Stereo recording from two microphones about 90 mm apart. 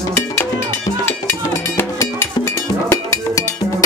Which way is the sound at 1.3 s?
30° left (ahead or behind).